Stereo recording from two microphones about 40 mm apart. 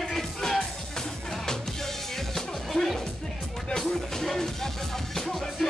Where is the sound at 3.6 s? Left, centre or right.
Centre.